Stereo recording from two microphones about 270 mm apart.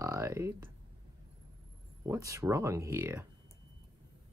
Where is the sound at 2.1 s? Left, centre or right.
Centre.